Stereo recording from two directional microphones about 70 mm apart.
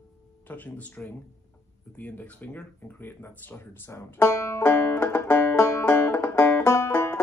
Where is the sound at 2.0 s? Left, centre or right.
Left.